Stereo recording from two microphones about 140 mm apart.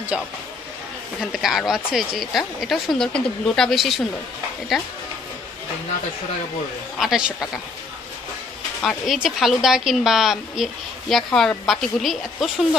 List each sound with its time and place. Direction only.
0.1 s speech: 10° right (ahead or behind)
1.3 s a woman's voice: centre (ahead or behind)
7.0 s a woman's voice: 5° right (ahead or behind)
8.8 s a woman's voice: centre (ahead or behind)